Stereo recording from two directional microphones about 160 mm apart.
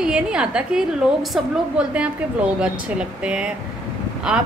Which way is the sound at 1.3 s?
5° right (ahead or behind).